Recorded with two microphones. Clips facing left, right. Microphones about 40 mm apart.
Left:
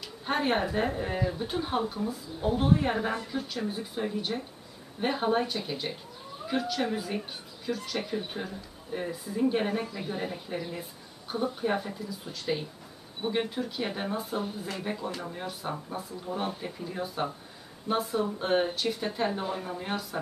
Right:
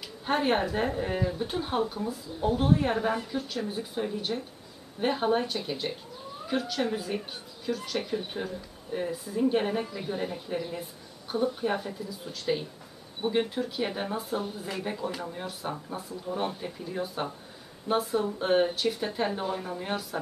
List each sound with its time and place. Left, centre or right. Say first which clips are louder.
0.0 s speech: right 2 dB; centre